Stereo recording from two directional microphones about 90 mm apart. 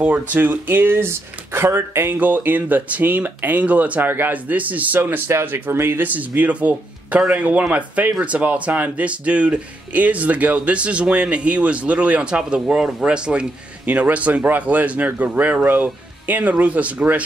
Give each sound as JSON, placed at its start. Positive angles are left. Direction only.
{"t": 0.3, "sound": "speech", "side_deg": -20}